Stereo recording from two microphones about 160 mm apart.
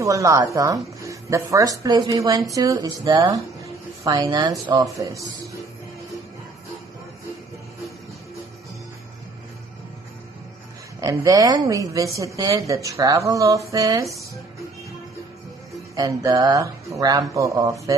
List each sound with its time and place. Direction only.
0.0 s speech: 20° right (ahead or behind)
11.0 s speech: 20° right (ahead or behind)
15.9 s speech: 20° right (ahead or behind)